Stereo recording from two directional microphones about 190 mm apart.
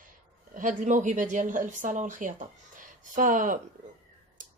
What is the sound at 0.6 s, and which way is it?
Speech, 40° right (ahead or behind).